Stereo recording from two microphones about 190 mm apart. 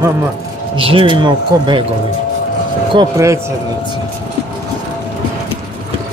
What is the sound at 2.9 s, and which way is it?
Speech, 20° right (ahead or behind).